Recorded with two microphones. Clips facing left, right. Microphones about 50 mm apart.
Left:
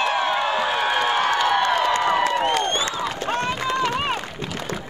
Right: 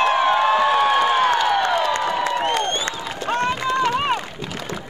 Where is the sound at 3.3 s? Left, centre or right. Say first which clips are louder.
Right 4 dB; centre.